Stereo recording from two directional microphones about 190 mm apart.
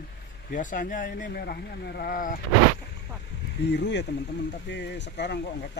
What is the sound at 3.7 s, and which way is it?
Speech, 65° left (ahead or behind).